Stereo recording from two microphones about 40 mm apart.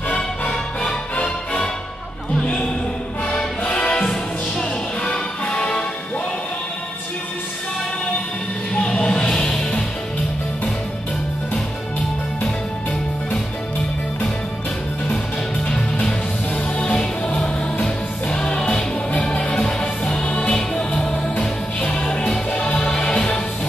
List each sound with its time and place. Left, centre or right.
1.2 s music: left
3.3 s music: left
8.7 s music: left
15.6 s music: left
22.8 s music: left